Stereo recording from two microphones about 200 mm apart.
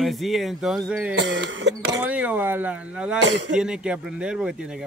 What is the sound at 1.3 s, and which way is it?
Speech, 60° right (ahead or behind).